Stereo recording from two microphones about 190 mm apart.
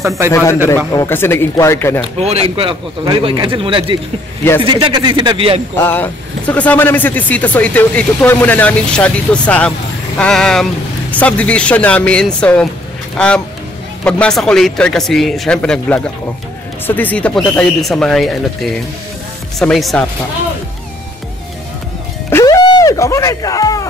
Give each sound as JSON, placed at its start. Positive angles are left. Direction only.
{"t": 0.3, "sound": "speech", "side_deg": 15}
{"t": 2.1, "sound": "speech", "side_deg": -35}
{"t": 5.8, "sound": "speech", "side_deg": 10}
{"t": 14.0, "sound": "speech", "side_deg": 5}
{"t": 22.3, "sound": "music", "side_deg": 20}